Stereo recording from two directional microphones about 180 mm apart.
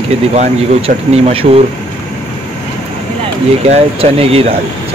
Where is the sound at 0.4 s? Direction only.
35° right (ahead or behind).